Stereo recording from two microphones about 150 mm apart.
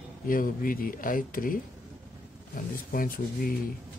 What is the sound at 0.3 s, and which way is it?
Speech, 70° left (ahead or behind).